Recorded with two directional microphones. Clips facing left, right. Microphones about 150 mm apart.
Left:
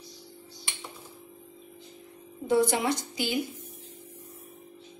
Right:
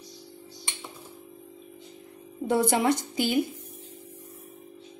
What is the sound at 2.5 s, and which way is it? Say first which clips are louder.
Speech: right 1 dB; 30° right (ahead or behind).